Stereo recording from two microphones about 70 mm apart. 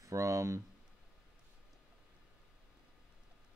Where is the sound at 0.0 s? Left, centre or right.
Right.